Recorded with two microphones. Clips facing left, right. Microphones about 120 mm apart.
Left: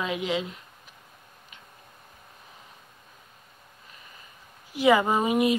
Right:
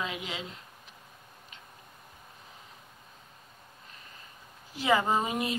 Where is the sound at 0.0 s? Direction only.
20° left (ahead or behind).